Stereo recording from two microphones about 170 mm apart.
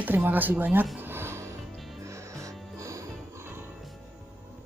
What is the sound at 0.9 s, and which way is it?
Music, 15° right (ahead or behind).